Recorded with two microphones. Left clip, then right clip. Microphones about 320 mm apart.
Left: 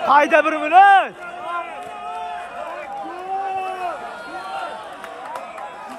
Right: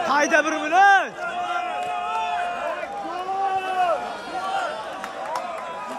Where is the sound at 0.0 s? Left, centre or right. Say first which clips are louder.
Left 5 dB; centre.